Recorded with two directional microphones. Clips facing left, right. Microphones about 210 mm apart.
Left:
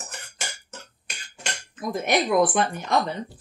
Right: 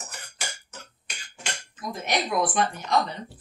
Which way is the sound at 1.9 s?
55° left (ahead or behind).